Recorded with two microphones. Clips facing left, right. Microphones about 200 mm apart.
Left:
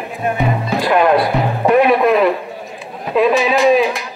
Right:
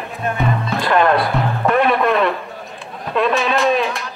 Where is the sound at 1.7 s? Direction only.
5° left (ahead or behind).